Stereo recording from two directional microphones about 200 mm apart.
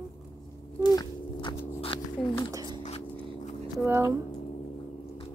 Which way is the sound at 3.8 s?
10° right (ahead or behind).